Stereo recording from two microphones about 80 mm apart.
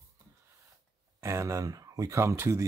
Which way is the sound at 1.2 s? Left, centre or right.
Right.